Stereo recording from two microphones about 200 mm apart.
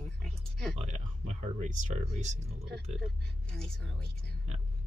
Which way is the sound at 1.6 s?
35° right (ahead or behind).